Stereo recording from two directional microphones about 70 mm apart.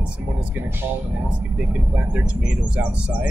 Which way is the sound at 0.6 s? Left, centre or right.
Right.